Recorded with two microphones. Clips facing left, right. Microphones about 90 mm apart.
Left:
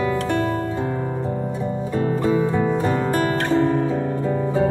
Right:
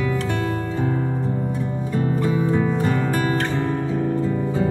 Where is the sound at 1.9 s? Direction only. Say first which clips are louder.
Left 2 dB; 30° left (ahead or behind).